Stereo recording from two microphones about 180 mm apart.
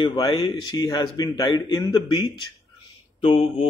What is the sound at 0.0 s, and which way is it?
Speech, 25° left (ahead or behind).